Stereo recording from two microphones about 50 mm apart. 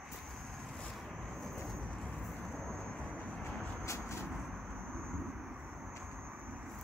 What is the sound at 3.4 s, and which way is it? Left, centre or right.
Vehicle, left.